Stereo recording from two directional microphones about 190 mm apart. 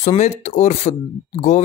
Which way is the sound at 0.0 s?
35° left (ahead or behind).